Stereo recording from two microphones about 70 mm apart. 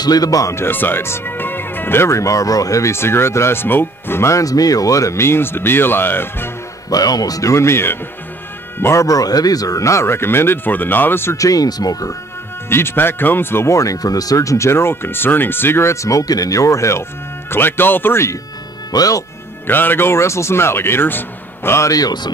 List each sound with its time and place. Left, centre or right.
0.0 s speech: left
0.6 s speech: left
6.9 s speech: left
9.0 s speech: left
11.3 s speech: left
12.6 s speech: left
13.7 s speech: left
17.5 s speech: left
18.9 s speech: left
19.7 s speech: left
21.7 s speech: left